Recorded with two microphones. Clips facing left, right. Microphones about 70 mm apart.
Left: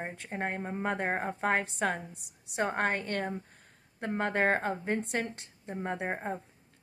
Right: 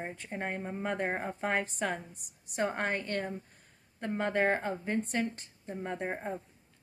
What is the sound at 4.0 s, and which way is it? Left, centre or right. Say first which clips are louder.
A woman's voice: left 1 dB; left.